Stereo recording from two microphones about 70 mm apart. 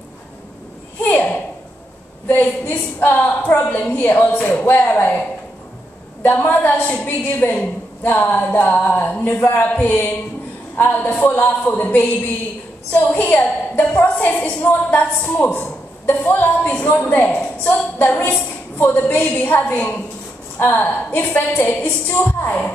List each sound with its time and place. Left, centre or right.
1.0 s a sound: left
2.2 s a woman's voice: left
6.2 s a woman's voice: left
19.0 s a woman's voice: centre